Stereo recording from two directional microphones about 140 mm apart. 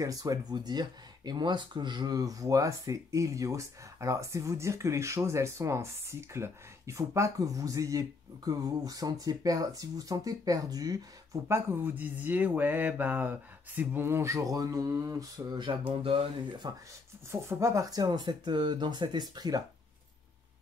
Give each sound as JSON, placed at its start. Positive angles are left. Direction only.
{"t": 0.0, "sound": "speech", "side_deg": -25}
{"t": 11.4, "sound": "speech", "side_deg": -20}
{"t": 17.3, "sound": "speech", "side_deg": -20}